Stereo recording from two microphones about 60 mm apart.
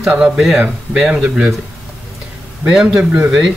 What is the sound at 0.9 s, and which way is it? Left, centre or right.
Speech, centre.